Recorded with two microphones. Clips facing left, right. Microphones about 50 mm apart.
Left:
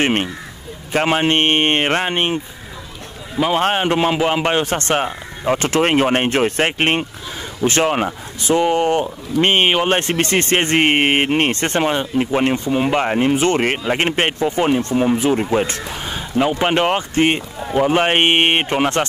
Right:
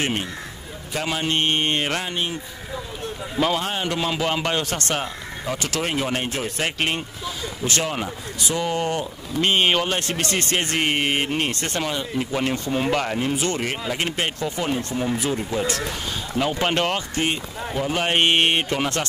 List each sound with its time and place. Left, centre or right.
0.0 s speech: left
3.5 s speech: left
15.9 s speech: left